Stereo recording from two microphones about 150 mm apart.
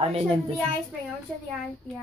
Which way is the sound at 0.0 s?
40° right (ahead or behind).